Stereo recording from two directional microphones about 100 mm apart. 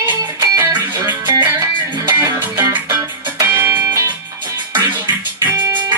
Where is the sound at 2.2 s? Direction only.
30° right (ahead or behind).